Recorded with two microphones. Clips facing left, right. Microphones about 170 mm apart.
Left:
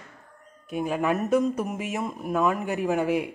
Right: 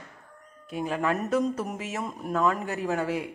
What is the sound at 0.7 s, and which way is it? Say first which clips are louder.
Speech: left 2 dB; 15° left (ahead or behind).